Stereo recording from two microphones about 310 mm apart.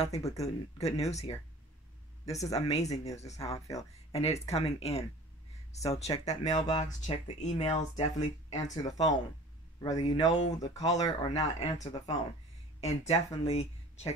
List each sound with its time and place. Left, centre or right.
0.0 s speech: centre
2.3 s speech: centre